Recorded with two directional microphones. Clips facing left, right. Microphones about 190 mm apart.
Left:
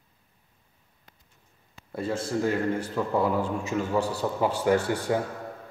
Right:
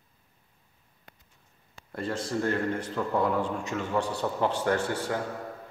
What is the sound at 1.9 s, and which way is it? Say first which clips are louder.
A man's voice: left 2 dB; 5° left (ahead or behind).